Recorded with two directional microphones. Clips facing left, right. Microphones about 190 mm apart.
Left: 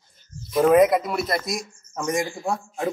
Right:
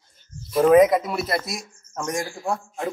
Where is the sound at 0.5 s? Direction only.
Centre (ahead or behind).